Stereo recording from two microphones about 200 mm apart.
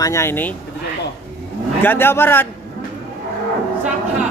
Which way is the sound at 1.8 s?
10° left (ahead or behind).